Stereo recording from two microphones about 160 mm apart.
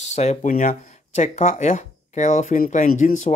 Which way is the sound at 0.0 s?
45° left (ahead or behind).